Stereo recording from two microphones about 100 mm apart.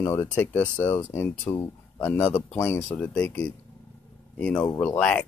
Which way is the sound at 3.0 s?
15° left (ahead or behind).